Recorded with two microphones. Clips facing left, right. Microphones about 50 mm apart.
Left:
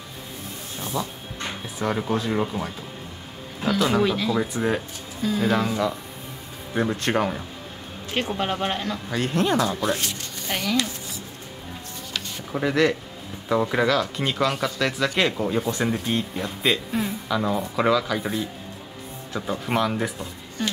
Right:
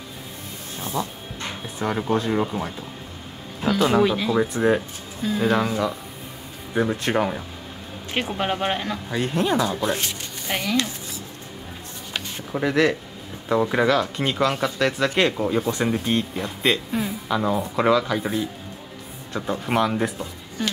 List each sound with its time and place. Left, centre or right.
1.0 s speech: right
1.8 s speech: centre
4.6 s speech: centre
5.4 s speech: centre
6.7 s speech: centre
8.1 s speech: right
12.5 s speech: centre